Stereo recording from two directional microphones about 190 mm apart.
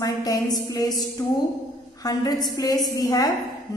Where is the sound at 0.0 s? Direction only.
20° left (ahead or behind).